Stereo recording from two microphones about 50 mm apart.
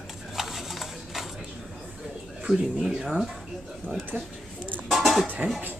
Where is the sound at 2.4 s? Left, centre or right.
Centre.